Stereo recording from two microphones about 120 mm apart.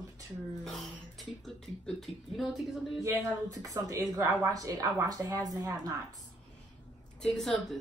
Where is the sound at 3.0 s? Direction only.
25° right (ahead or behind).